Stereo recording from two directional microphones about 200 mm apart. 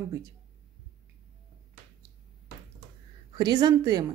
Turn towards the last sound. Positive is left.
turn(degrees=-20)  # may be behind; listen again after turning